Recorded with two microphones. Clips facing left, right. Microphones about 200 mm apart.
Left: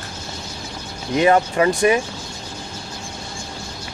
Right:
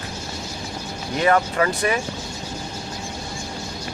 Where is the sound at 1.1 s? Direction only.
20° left (ahead or behind).